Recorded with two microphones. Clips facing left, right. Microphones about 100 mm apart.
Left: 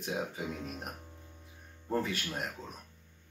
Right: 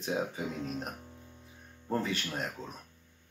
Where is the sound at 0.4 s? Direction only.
5° left (ahead or behind).